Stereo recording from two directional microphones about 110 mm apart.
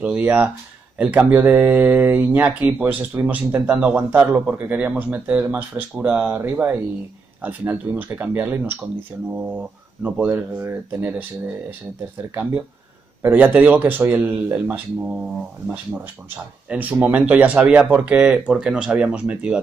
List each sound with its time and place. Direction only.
0.0 s speech: 15° right (ahead or behind)
13.2 s speech: 15° right (ahead or behind)
16.6 s speech: 10° right (ahead or behind)